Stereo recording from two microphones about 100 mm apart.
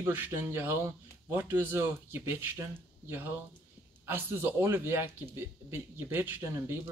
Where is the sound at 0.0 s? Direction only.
25° right (ahead or behind).